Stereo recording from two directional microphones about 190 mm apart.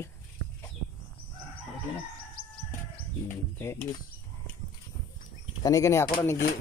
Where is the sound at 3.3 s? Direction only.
15° left (ahead or behind).